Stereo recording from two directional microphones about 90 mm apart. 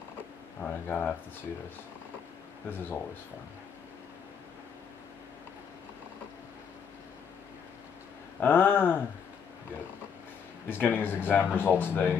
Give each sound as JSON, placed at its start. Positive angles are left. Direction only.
{"t": 0.6, "sound": "speech", "side_deg": 15}
{"t": 8.4, "sound": "speech", "side_deg": 20}
{"t": 10.7, "sound": "speech", "side_deg": 25}